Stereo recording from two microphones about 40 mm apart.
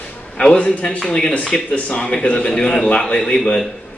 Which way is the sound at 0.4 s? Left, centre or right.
Left.